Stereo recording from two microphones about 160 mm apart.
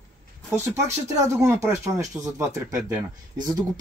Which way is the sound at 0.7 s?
20° right (ahead or behind).